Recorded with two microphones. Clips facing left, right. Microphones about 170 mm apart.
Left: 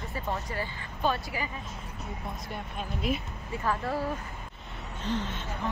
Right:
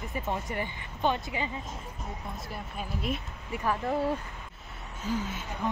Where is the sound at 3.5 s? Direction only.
15° right (ahead or behind).